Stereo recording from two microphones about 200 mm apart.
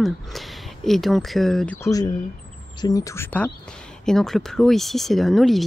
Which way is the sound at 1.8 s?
20° left (ahead or behind).